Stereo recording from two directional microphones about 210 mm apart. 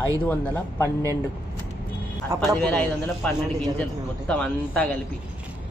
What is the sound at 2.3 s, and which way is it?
Speech, 15° right (ahead or behind).